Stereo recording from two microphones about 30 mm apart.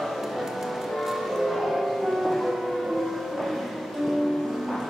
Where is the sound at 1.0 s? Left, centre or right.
Centre.